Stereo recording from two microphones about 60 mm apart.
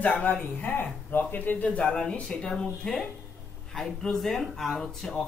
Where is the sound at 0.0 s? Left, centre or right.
Left.